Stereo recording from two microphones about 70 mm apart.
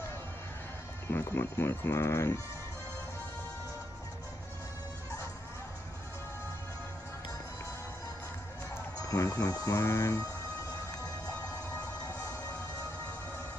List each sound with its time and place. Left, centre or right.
1.0 s speech: left
9.0 s speech: left
9.8 s music: left